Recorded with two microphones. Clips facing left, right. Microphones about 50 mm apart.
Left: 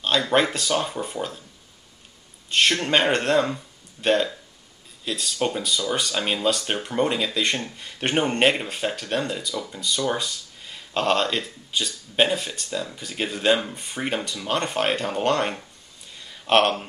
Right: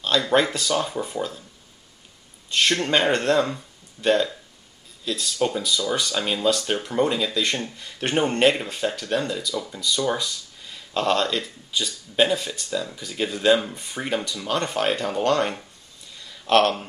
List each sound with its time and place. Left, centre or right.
0.0 s speech: centre
2.5 s speech: centre